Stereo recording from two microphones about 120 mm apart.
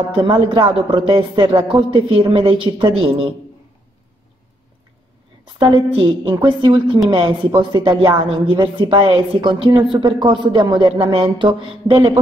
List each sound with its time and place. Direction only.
0.1 s speech: 45° right (ahead or behind)
5.4 s a woman's voice: 40° right (ahead or behind)